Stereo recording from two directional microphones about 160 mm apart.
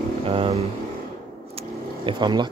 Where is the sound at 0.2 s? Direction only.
35° right (ahead or behind).